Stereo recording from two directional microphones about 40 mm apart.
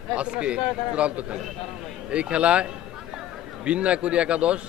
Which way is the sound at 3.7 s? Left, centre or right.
Right.